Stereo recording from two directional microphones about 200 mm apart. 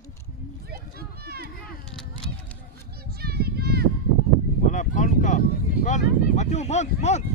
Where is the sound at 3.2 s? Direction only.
50° right (ahead or behind).